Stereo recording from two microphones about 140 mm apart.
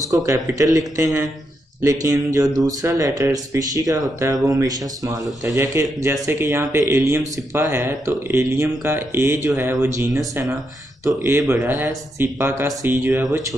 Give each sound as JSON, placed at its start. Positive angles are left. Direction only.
{"t": 0.0, "sound": "speech", "side_deg": -25}